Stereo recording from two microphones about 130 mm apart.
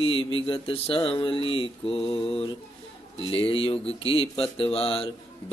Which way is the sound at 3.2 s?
45° left (ahead or behind).